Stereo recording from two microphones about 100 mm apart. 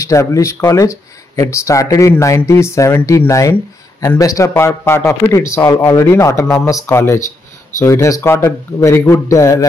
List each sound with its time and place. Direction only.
0.0 s speech: 30° left (ahead or behind)